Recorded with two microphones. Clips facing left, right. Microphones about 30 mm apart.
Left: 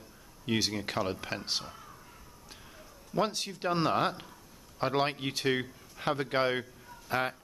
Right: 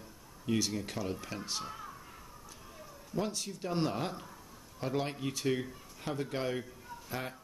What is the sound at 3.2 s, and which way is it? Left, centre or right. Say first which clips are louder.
A man's voice: left 5 dB; left.